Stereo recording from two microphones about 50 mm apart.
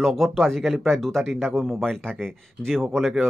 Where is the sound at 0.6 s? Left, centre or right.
Centre.